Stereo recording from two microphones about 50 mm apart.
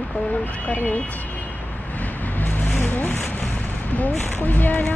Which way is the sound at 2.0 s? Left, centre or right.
Left.